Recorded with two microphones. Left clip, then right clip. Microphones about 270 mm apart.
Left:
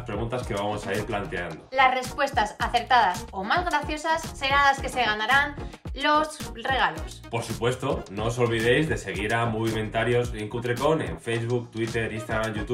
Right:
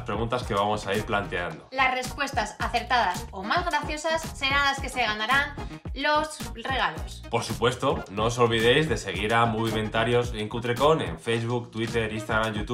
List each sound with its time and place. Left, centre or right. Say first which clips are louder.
0.7 s speech: right 2 dB; centre
1.8 s speech: left 4 dB; centre